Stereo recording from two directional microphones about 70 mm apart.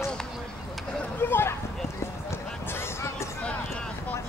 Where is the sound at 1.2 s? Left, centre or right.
Left.